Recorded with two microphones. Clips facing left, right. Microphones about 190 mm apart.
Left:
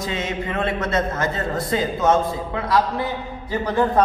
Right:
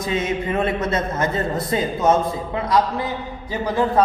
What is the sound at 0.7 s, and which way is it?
Speech, 20° right (ahead or behind).